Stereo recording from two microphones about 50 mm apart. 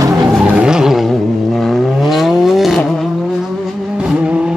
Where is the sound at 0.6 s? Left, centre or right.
Centre.